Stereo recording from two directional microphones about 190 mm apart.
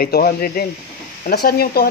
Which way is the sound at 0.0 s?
55° left (ahead or behind).